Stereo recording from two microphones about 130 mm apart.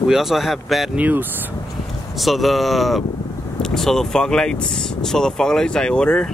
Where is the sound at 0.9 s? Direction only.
15° right (ahead or behind).